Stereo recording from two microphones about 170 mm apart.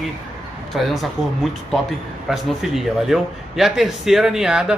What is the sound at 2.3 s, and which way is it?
Speech, centre (ahead or behind).